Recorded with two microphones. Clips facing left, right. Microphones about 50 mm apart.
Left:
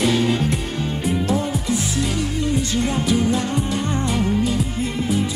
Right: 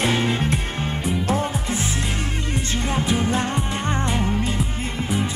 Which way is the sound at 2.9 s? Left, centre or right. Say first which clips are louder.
Even; right.